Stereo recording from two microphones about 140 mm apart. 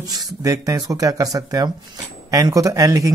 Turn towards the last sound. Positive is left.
turn(degrees=-25)  # may be behind; listen again after turning